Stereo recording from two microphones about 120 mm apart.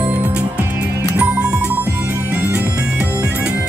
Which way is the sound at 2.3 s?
10° right (ahead or behind).